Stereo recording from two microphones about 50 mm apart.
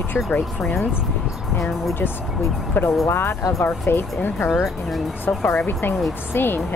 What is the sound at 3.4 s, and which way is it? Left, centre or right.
Speech, left.